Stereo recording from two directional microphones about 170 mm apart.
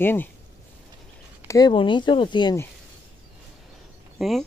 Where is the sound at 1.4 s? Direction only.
20° left (ahead or behind).